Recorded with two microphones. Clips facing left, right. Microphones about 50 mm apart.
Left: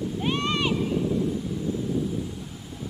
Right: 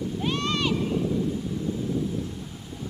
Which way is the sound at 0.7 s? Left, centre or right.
Centre.